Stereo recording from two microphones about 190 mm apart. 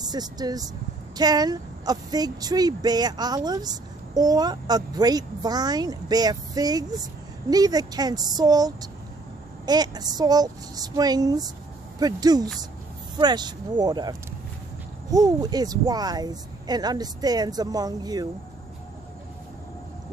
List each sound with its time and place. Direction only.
0.0 s speech: 20° right (ahead or behind)